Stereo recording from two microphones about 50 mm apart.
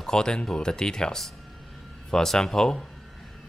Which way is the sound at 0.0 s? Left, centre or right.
Centre.